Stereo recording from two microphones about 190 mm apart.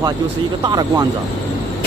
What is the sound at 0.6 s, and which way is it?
Speech, 20° right (ahead or behind).